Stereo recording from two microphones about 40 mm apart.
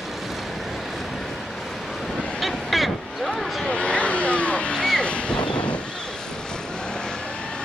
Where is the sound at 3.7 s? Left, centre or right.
Left.